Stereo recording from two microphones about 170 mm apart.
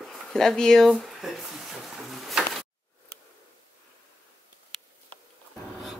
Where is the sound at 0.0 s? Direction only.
Centre (ahead or behind).